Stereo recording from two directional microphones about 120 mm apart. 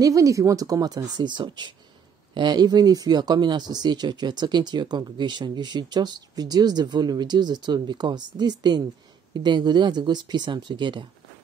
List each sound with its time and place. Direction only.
0.0 s speech: 25° right (ahead or behind)